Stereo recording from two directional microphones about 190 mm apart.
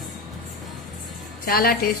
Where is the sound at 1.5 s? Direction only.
50° left (ahead or behind).